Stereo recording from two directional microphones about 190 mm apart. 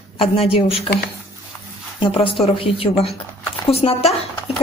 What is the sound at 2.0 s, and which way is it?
Speech, 30° left (ahead or behind).